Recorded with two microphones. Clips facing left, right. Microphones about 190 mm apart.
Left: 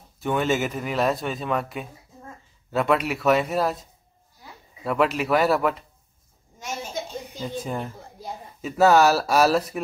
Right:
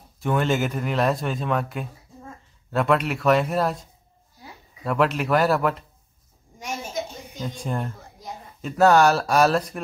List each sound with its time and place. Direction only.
0.2 s a man's voice: centre (ahead or behind)
7.3 s speech: 5° left (ahead or behind)